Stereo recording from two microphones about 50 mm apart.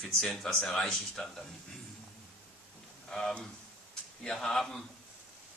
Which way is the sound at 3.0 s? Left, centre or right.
Centre.